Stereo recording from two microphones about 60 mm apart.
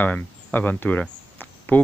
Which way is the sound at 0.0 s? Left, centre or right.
Left.